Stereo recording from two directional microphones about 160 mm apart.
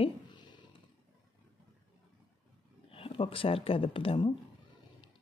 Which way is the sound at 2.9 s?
35° left (ahead or behind).